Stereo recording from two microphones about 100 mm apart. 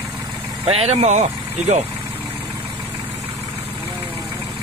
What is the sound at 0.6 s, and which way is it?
Speech, 85° right.